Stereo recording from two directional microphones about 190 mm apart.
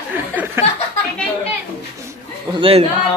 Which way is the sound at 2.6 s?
30° right (ahead or behind).